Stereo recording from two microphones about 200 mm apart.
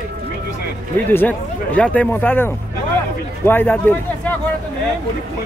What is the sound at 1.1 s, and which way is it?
Speech, 10° left (ahead or behind).